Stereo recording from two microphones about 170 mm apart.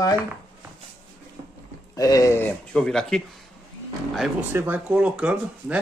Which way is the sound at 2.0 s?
20° left (ahead or behind).